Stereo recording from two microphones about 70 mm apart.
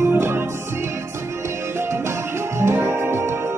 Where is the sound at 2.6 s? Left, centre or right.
Right.